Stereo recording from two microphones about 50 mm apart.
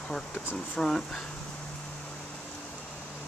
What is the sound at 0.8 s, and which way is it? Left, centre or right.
Speech, centre.